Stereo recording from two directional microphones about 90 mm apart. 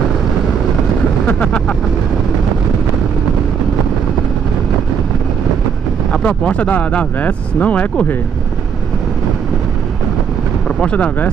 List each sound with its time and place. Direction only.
1.2 s speech: 15° left (ahead or behind)
6.1 s speech: 10° left (ahead or behind)
10.8 s speech: 15° left (ahead or behind)